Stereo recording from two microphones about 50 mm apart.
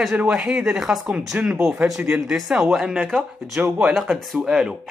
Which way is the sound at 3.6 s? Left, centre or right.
Right.